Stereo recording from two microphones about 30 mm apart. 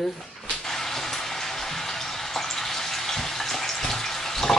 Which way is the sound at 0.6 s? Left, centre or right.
Centre.